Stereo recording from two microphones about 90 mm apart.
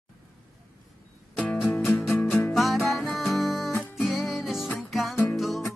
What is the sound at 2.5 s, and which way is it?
Music, centre (ahead or behind).